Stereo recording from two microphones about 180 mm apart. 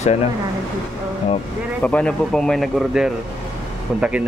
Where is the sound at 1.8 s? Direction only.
5° left (ahead or behind).